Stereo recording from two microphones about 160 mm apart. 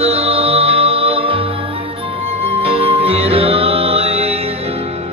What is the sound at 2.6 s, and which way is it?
Music, 35° right (ahead or behind).